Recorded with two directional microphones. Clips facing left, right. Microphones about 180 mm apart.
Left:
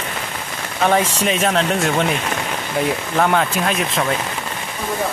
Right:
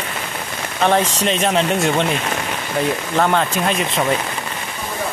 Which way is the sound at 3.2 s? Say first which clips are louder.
Even; centre (ahead or behind).